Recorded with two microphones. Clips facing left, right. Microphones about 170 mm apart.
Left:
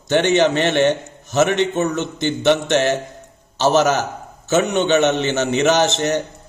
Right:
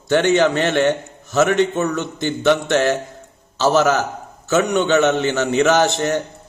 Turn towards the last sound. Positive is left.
turn(degrees=20)  # may be behind; listen again after turning